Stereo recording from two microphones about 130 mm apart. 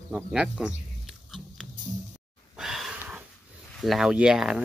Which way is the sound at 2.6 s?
Centre (ahead or behind).